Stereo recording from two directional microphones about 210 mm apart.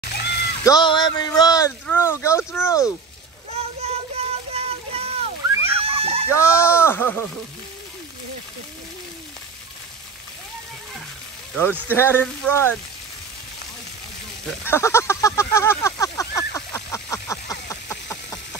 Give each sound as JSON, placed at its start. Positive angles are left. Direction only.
{"t": 0.0, "sound": "cat", "side_deg": 50}
{"t": 0.7, "sound": "a sound", "side_deg": 20}
{"t": 3.5, "sound": "child singing", "side_deg": -30}
{"t": 6.2, "sound": "speech", "side_deg": 10}
{"t": 11.9, "sound": "speech", "side_deg": 10}
{"t": 14.6, "sound": "a sound", "side_deg": 10}